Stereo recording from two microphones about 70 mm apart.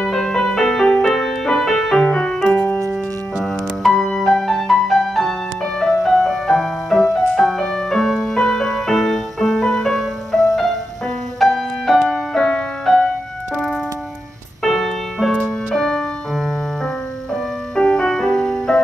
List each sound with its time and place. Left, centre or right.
0.0 s music: centre
2.5 s music: left
3.8 s music: centre
12.4 s music: centre
14.6 s music: centre
17.7 s music: centre